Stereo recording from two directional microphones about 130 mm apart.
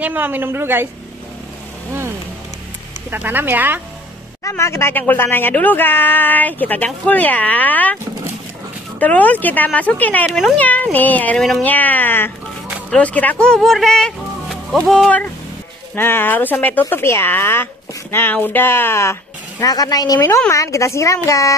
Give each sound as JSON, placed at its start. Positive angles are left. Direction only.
{"t": 0.0, "sound": "a woman's voice", "side_deg": -15}
{"t": 3.1, "sound": "a woman's voice", "side_deg": -15}
{"t": 4.5, "sound": "speech", "side_deg": 20}
{"t": 9.0, "sound": "speech", "side_deg": 10}
{"t": 15.9, "sound": "speech", "side_deg": 15}